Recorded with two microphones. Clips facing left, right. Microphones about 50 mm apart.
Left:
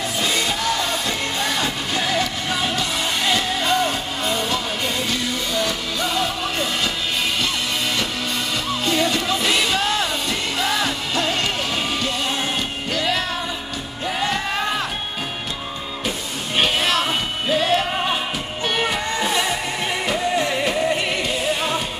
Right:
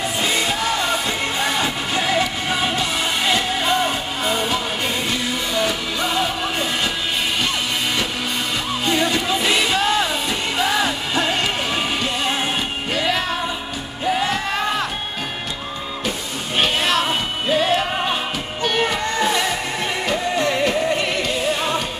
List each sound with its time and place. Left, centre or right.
0.2 s music: centre
8.8 s music: centre
14.0 s music: centre
16.5 s music: centre
18.6 s music: centre